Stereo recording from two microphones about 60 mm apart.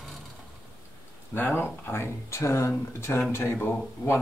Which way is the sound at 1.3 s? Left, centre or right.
Left.